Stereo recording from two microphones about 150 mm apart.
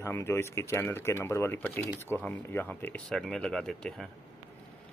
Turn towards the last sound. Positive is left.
turn(degrees=5)  # may be behind; listen again after turning